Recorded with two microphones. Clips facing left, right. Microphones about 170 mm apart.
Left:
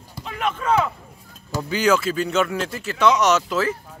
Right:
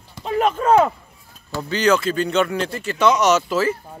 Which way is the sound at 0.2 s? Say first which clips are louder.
Right 7 dB; 40° right (ahead or behind).